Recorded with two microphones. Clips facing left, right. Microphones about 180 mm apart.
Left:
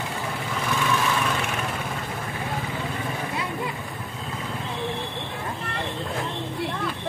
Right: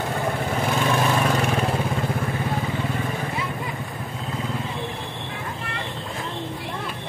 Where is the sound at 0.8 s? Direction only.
40° right (ahead or behind).